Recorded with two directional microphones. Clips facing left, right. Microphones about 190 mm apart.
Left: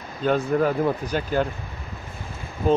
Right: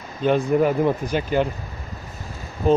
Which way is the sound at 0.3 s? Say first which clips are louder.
Right 3 dB; 10° right (ahead or behind).